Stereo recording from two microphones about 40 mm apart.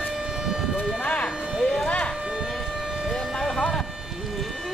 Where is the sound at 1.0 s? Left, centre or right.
Left.